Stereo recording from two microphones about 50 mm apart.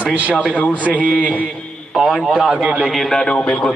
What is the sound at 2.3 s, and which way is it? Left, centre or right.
Speech, centre.